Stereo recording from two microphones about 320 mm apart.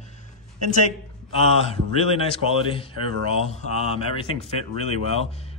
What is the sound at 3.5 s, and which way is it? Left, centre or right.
Speech, centre.